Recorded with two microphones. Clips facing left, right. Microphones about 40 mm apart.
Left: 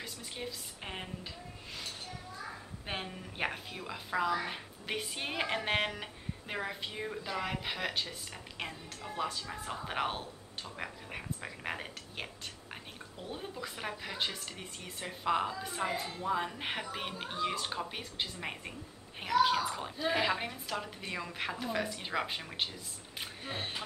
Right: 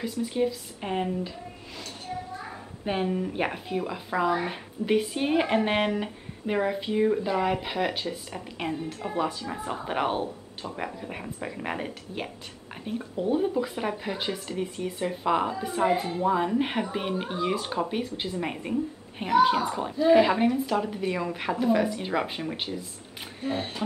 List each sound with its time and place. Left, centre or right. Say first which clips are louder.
0.0 s speech: right 15 dB; centre
2.8 s a woman's voice: right 14 dB; centre
15.9 s a woman's voice: right 11 dB; right
16.3 s a woman's voice: right 9 dB; centre